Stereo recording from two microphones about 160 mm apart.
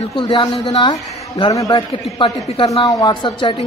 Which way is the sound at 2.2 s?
30° left (ahead or behind).